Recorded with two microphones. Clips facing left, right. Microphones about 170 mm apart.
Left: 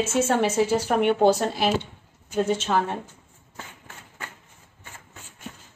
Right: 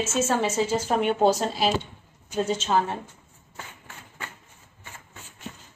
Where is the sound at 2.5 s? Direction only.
60° left (ahead or behind).